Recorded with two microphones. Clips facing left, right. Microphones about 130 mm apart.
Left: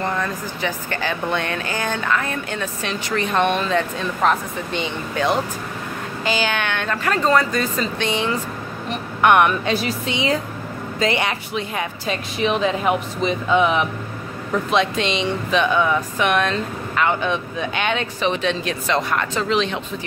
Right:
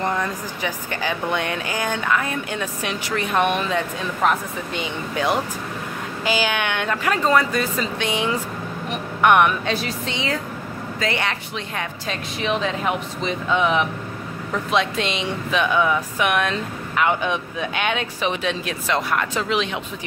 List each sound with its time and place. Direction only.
0.0 s a woman's voice: 15° right (ahead or behind); by 11.3 s 20° left (ahead or behind)
11.5 s speech: 5° left (ahead or behind); by 19.8 s 10° right (ahead or behind)